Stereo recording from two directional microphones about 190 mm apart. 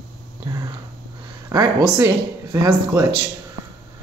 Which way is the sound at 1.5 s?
20° right (ahead or behind).